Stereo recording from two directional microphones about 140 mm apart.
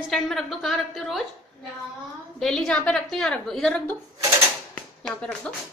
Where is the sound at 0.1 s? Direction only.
Centre (ahead or behind).